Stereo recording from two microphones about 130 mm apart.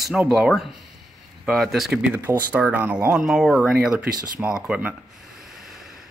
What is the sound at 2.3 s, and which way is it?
Speech, 15° right (ahead or behind).